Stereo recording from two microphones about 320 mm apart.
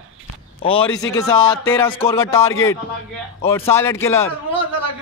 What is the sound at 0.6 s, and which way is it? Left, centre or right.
A man's voice, centre.